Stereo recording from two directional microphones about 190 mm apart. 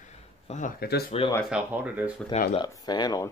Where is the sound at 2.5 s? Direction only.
20° left (ahead or behind).